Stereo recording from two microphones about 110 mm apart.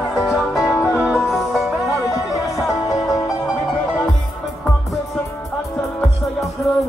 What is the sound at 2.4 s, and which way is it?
Music, 30° left (ahead or behind).